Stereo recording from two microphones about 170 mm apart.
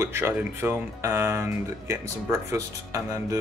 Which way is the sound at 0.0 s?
15° right (ahead or behind).